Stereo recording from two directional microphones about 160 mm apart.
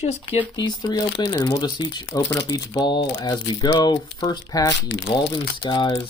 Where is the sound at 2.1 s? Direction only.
15° left (ahead or behind).